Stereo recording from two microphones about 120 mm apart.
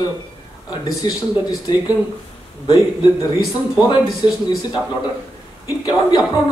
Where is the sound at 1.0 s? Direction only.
30° left (ahead or behind).